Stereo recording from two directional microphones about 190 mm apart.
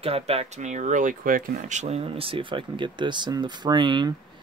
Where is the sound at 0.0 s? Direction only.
30° right (ahead or behind).